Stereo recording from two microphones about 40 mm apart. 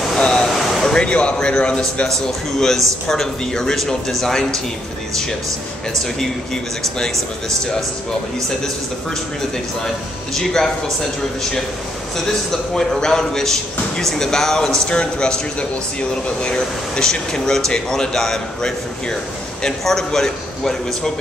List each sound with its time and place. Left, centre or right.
0.2 s a sound: centre
0.6 s a sound: centre
0.9 s a man's voice: left
2.2 s speech: centre
3.7 s speech: centre
6.1 s speech: centre
10.3 s speech: centre
12.2 s speech: centre